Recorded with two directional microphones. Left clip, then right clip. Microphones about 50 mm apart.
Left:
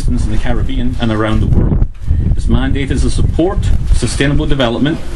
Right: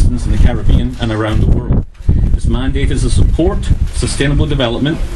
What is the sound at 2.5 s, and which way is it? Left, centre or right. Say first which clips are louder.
Speech: left 2 dB; left.